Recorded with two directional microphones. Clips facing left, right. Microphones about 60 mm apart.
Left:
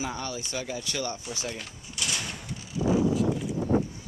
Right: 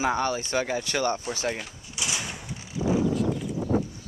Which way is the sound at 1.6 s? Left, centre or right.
Centre.